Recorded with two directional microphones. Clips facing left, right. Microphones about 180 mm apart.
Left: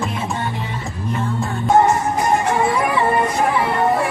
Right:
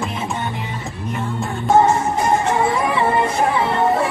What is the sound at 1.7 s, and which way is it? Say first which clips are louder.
Music: even; 25° right (ahead or behind).